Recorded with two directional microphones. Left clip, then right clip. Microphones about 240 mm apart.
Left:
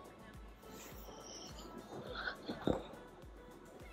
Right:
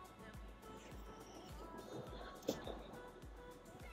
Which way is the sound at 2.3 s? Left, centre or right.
Centre.